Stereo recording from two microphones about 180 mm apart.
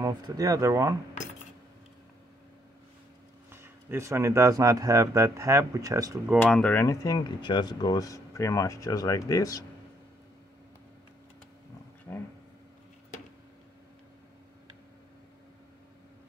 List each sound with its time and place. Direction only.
0.0 s speech: 20° right (ahead or behind)
3.5 s speech: 15° right (ahead or behind)
6.4 s speech: 10° left (ahead or behind)
12.1 s speech: 15° left (ahead or behind)